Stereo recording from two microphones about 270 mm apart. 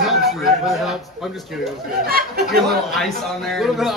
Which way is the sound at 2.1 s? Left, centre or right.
Right.